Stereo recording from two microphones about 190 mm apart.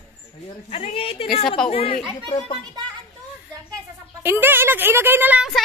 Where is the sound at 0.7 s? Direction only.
30° left (ahead or behind).